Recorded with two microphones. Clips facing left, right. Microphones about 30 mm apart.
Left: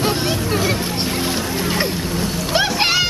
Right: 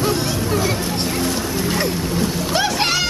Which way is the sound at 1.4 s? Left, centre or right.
Centre.